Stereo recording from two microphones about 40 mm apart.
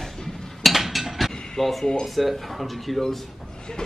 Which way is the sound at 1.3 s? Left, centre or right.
Centre.